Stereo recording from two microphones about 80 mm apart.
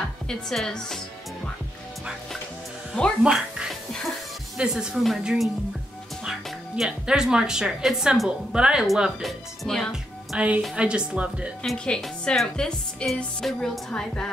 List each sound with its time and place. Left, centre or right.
0.3 s speech: centre
2.9 s speech: centre
3.3 s a woman's voice: centre
6.8 s a woman's voice: centre
10.3 s a woman's voice: centre
11.6 s speech: centre